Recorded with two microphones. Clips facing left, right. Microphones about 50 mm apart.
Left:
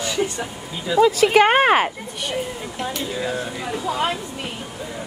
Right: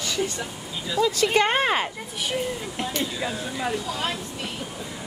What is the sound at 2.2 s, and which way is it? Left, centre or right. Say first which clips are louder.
Speech: left 1 dB; centre.